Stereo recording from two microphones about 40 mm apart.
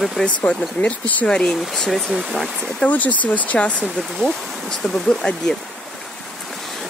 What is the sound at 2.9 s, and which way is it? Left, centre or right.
Speech, left.